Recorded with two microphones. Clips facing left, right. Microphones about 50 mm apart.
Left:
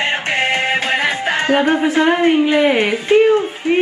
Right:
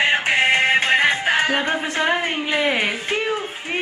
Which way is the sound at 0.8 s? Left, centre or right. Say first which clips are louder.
Even; centre.